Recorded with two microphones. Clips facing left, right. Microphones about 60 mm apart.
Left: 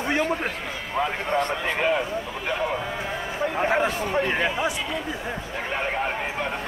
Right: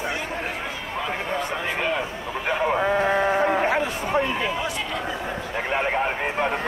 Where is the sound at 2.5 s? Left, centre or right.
Centre.